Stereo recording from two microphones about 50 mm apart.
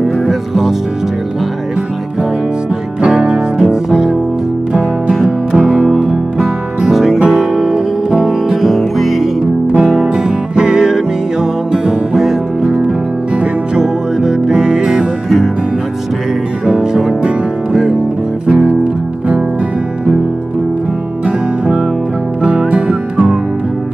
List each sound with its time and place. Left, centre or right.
0.3 s music: centre
3.0 s music: centre
5.7 s music: centre
9.4 s music: centre
15.2 s music: centre
16.6 s music: centre
18.5 s music: right
22.4 s music: centre